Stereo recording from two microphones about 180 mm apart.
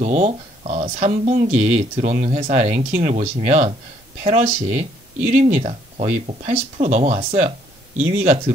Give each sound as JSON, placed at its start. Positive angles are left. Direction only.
{"t": 0.0, "sound": "speech", "side_deg": -40}